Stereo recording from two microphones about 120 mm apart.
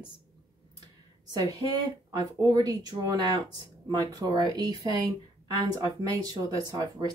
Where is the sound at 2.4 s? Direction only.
30° right (ahead or behind).